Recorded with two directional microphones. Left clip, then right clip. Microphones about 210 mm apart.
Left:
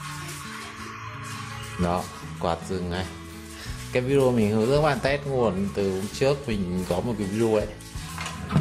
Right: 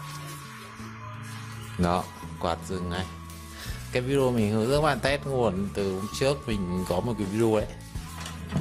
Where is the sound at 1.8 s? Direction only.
35° right (ahead or behind).